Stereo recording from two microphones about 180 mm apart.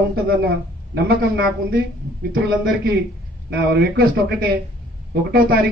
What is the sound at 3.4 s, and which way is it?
A man's voice, 65° right (ahead or behind).